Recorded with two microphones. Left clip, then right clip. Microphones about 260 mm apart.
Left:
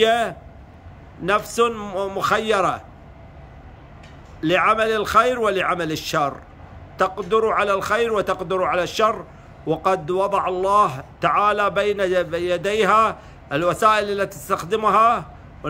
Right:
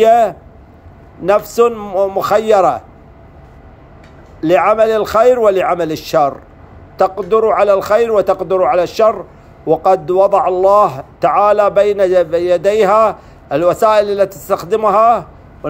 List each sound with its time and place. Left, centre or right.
0.0 s a man's voice: centre
4.4 s a man's voice: centre